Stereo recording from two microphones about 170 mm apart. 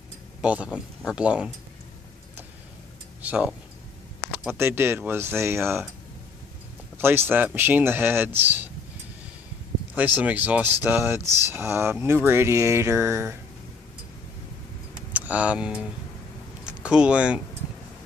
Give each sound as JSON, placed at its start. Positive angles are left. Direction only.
{"t": 0.4, "sound": "speech", "side_deg": -5}
{"t": 3.2, "sound": "speech", "side_deg": -5}
{"t": 7.0, "sound": "speech", "side_deg": -15}
{"t": 9.9, "sound": "speech", "side_deg": -10}
{"t": 15.1, "sound": "speech", "side_deg": -10}